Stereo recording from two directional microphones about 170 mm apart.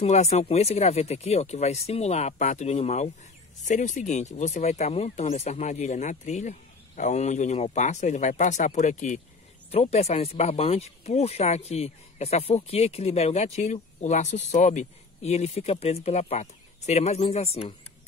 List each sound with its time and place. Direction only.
0.0 s speech: 40° left (ahead or behind)